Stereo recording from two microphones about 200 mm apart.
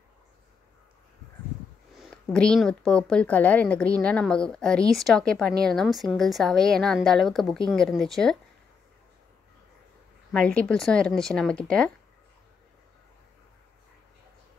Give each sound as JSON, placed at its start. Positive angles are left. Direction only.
{"t": 2.2, "sound": "a woman's voice", "side_deg": 5}
{"t": 10.3, "sound": "a woman's voice", "side_deg": 5}